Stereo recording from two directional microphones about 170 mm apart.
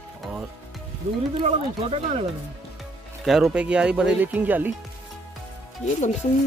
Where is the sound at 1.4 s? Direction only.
35° right (ahead or behind).